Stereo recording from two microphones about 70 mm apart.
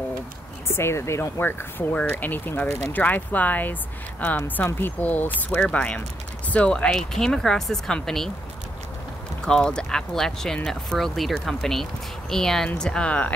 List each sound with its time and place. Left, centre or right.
0.7 s speech: left; by 8.3 s centre
9.4 s speech: centre